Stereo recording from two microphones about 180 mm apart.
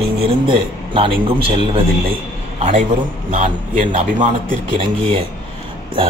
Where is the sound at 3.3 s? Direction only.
45° right (ahead or behind).